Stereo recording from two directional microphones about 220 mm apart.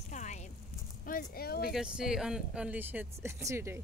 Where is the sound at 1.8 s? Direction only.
5° right (ahead or behind).